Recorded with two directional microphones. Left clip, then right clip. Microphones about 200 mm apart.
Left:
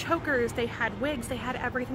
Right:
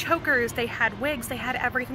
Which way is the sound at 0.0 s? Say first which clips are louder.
Right 4 dB; 10° right (ahead or behind).